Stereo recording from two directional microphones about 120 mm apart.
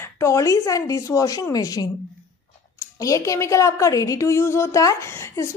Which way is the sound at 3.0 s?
25° left (ahead or behind).